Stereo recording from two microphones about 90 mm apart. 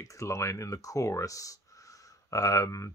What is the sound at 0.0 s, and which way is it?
Speech, 35° left (ahead or behind).